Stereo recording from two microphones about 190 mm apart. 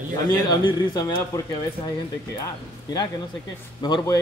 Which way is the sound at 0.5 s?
20° left (ahead or behind).